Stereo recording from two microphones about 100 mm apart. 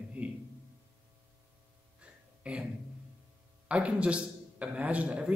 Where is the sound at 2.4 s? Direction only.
10° right (ahead or behind).